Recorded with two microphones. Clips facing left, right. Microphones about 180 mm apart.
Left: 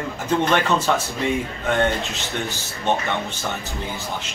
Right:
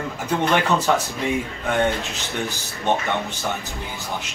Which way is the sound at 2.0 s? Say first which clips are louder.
Left 2 dB; 15° left (ahead or behind).